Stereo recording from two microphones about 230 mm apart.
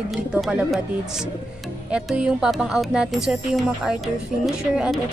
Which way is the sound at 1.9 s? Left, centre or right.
Centre.